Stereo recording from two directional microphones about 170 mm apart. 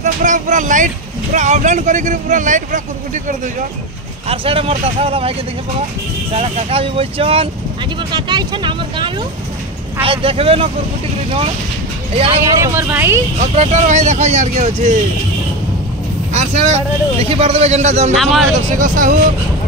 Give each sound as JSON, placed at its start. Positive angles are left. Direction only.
{"t": 0.0, "sound": "speech", "side_deg": -45}
{"t": 4.3, "sound": "a man's voice", "side_deg": -35}
{"t": 6.3, "sound": "a man's voice", "side_deg": -40}
{"t": 12.4, "sound": "speech", "side_deg": -15}
{"t": 13.6, "sound": "speech", "side_deg": -45}
{"t": 16.3, "sound": "a man's voice", "side_deg": -40}
{"t": 18.1, "sound": "speech", "side_deg": 0}
{"t": 18.8, "sound": "speech", "side_deg": -50}